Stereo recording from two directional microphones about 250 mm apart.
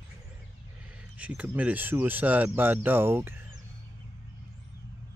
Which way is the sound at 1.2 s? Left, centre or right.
Centre.